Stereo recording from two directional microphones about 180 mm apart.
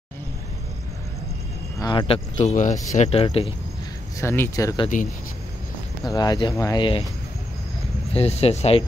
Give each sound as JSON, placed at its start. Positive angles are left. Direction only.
{"t": 1.8, "sound": "speech", "side_deg": 25}
{"t": 4.2, "sound": "speech", "side_deg": 15}
{"t": 6.1, "sound": "speech", "side_deg": 20}
{"t": 8.1, "sound": "speech", "side_deg": 35}